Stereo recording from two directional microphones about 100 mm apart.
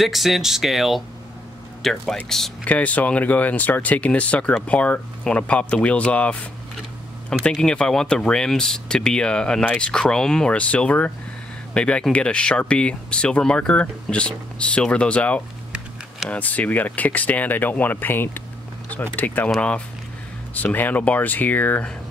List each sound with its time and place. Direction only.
0.0 s speech: centre (ahead or behind)
2.6 s speech: 15° left (ahead or behind)
20.5 s speech: 15° left (ahead or behind)